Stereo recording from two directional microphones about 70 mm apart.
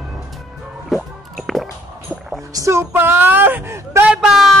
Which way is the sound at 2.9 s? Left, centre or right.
Right.